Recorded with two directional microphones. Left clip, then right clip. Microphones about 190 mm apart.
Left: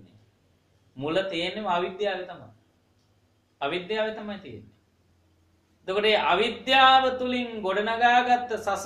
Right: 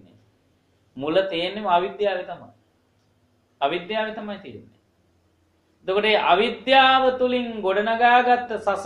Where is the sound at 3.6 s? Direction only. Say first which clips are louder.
Right 4 dB; 30° right (ahead or behind).